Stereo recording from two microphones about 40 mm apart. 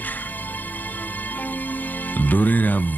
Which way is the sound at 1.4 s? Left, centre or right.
Left.